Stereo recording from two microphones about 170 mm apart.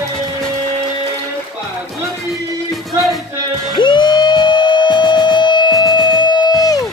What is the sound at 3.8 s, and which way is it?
Music, 25° left (ahead or behind).